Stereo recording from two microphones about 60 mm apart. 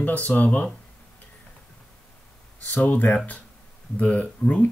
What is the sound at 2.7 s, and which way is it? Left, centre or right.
Speech, left.